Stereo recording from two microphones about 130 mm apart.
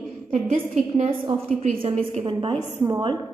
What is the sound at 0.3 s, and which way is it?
A woman's voice, 60° right (ahead or behind).